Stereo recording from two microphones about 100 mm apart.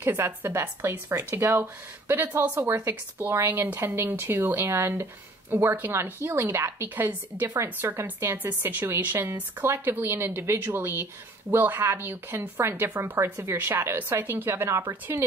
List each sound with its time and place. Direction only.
0.0 s speech: 25° right (ahead or behind)